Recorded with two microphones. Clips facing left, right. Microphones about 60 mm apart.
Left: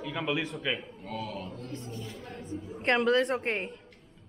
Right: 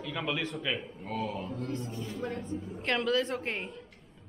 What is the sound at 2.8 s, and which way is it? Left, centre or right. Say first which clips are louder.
Speech: left 4 dB; left.